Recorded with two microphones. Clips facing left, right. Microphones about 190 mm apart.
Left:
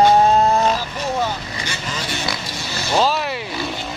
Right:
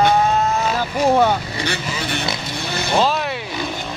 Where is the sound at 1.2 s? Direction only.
60° right (ahead or behind).